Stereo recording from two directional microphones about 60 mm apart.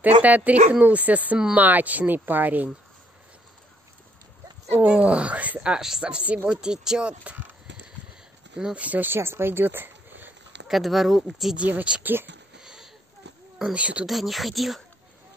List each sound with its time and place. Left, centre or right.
0.0 s speech: right
4.8 s speech: right
8.5 s speech: centre
8.8 s speech: right
9.1 s speech: right
10.7 s speech: centre
11.5 s speech: right
12.0 s speech: right
12.5 s a sound: centre
13.7 s speech: right
14.0 s speech: centre